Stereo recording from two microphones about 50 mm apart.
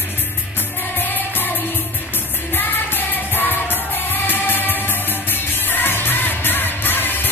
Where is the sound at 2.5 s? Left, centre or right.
Left.